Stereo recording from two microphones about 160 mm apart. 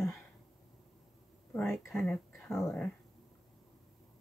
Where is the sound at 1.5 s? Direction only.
5° left (ahead or behind).